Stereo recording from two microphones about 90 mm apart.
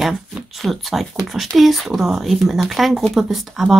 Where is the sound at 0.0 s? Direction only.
Centre (ahead or behind).